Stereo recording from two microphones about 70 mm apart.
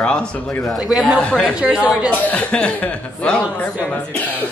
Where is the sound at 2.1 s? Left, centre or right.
Left.